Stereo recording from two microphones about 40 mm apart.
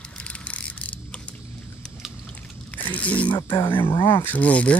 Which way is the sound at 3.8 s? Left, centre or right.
Left.